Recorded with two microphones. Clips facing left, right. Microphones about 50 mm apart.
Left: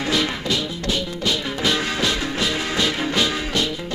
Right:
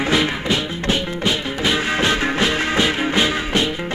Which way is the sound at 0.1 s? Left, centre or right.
Right.